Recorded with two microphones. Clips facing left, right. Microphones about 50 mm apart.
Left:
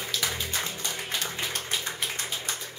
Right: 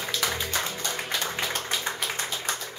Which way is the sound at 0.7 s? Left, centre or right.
Right.